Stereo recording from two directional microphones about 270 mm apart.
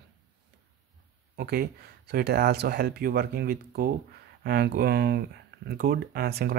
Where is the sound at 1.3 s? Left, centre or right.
Right.